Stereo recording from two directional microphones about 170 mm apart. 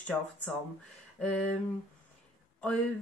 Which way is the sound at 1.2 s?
5° left (ahead or behind).